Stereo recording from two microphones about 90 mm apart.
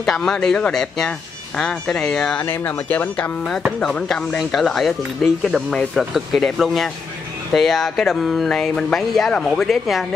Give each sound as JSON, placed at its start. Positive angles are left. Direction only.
{"t": 0.0, "sound": "speech", "side_deg": 5}
{"t": 2.4, "sound": "speech", "side_deg": 20}
{"t": 3.8, "sound": "speech", "side_deg": 5}